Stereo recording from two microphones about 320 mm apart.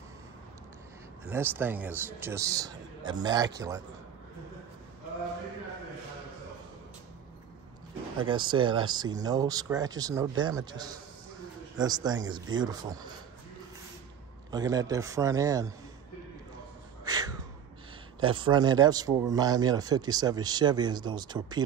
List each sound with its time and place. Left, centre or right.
1.3 s a man's voice: centre
8.2 s a man's voice: centre
14.5 s a man's voice: centre
17.0 s a sound: centre
18.2 s a man's voice: centre